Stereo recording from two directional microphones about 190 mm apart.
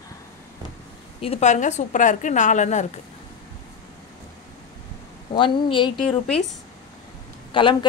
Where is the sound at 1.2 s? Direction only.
35° left (ahead or behind).